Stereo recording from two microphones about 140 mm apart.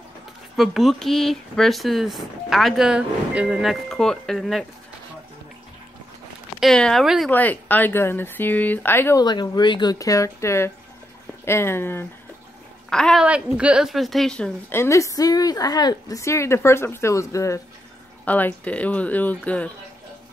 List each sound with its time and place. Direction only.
0.6 s speech: centre (ahead or behind)
6.6 s speech: 5° left (ahead or behind)
7.2 s speech: 10° left (ahead or behind)
9.2 s a woman's voice: 30° left (ahead or behind); by 12.1 s 15° left (ahead or behind)
12.9 s speech: 5° left (ahead or behind)
13.2 s speech: 10° right (ahead or behind)
14.7 s a woman's voice: 20° left (ahead or behind)
18.2 s speech: 10° left (ahead or behind)